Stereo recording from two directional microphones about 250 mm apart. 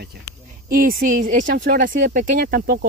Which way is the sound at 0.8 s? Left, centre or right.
Right.